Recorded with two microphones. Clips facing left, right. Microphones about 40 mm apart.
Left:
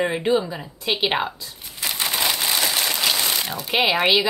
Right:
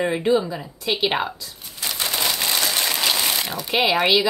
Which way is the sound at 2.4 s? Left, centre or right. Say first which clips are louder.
Even; centre.